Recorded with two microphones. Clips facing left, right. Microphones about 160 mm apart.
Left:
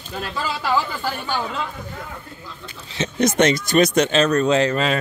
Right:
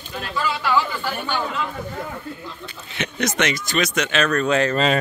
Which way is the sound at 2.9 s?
25° left (ahead or behind).